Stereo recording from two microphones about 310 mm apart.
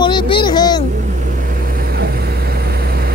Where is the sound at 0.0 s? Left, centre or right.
Centre.